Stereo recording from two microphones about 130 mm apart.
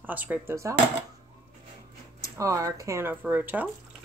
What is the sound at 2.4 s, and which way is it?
Speech, 25° right (ahead or behind).